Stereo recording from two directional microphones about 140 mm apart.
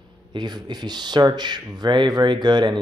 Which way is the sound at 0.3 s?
30° right (ahead or behind).